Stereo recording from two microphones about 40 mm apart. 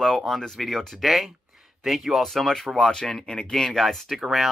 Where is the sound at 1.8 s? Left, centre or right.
Centre.